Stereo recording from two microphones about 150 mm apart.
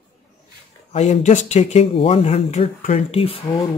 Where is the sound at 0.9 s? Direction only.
45° left (ahead or behind).